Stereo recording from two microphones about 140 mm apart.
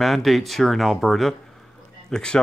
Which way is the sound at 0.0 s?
Centre (ahead or behind).